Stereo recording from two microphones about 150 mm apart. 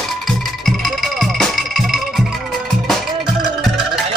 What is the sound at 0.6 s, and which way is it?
Music, centre (ahead or behind).